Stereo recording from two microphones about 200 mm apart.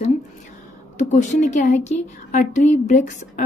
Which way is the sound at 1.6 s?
35° left (ahead or behind).